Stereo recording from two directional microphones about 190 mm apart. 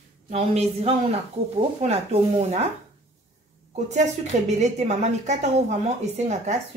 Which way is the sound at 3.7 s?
35° right (ahead or behind).